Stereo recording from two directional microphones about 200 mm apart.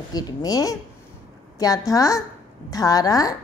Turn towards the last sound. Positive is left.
turn(degrees=20)  # may be behind; listen again after turning